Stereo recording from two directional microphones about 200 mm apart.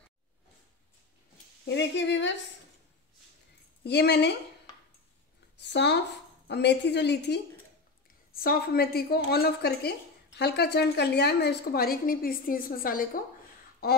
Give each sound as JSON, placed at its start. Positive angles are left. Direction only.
{"t": 1.7, "sound": "a woman's voice", "side_deg": 60}
{"t": 3.8, "sound": "a woman's voice", "side_deg": 55}
{"t": 5.6, "sound": "a sound", "side_deg": 60}
{"t": 6.4, "sound": "a woman's voice", "side_deg": 55}